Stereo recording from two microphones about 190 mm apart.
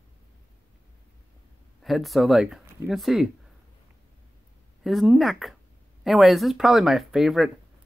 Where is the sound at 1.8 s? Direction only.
Centre (ahead or behind).